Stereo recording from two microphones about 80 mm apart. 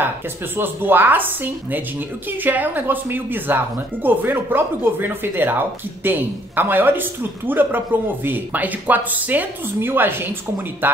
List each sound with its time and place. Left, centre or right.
0.6 s speech: right